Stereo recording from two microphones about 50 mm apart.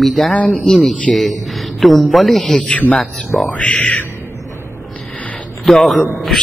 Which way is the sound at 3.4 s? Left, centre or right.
Left.